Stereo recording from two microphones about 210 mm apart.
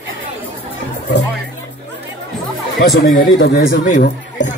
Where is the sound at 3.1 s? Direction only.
40° left (ahead or behind).